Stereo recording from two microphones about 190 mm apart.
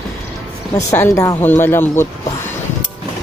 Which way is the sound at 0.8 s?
15° left (ahead or behind).